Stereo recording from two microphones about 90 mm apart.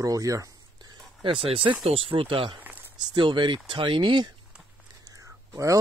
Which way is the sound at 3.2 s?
65° right (ahead or behind).